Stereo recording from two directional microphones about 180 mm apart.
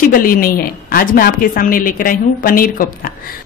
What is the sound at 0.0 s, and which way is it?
A woman's voice, 50° left (ahead or behind).